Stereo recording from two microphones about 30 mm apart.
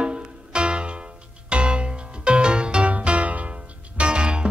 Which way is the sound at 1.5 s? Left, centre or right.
Right.